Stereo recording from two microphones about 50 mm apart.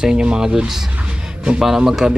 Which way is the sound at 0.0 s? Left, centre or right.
Centre.